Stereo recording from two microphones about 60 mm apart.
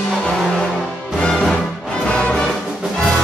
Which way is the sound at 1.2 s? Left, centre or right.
Centre.